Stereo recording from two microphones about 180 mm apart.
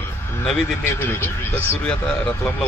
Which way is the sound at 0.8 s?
15° left (ahead or behind).